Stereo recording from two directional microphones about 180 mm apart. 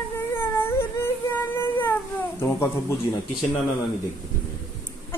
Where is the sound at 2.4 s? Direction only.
15° left (ahead or behind).